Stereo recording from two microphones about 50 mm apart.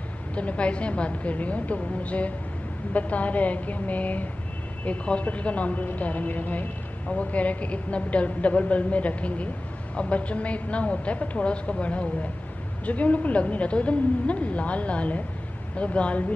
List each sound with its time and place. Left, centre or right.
0.4 s a woman's voice: left